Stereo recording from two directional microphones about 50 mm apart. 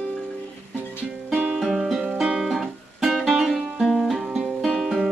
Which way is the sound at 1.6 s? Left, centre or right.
Centre.